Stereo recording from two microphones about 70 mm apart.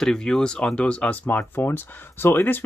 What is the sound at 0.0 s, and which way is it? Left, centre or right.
Speech, centre.